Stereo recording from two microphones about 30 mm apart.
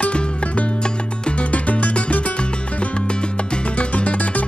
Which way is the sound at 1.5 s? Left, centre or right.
Left.